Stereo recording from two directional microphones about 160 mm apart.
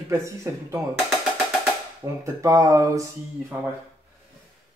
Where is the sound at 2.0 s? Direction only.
20° right (ahead or behind).